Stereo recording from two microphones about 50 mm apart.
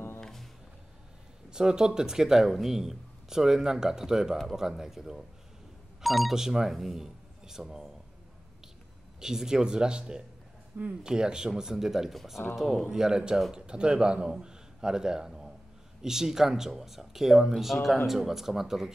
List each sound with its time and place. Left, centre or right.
0.2 s music: centre
1.5 s speech: centre
9.2 s speech: centre
10.8 s speech: right
11.1 s a man's voice: centre